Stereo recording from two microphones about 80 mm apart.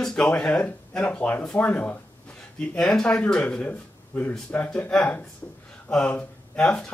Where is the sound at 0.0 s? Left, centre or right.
Centre.